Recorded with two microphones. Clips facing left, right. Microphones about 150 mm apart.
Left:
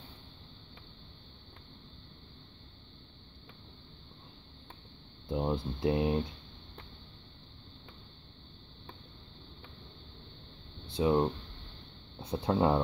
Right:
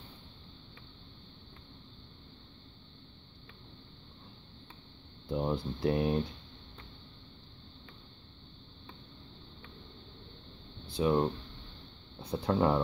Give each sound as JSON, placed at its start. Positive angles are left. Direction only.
{"t": 5.3, "sound": "speech", "side_deg": 20}
{"t": 11.0, "sound": "speech", "side_deg": 20}